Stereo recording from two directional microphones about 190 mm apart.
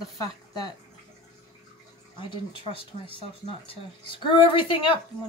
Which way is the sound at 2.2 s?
25° left (ahead or behind).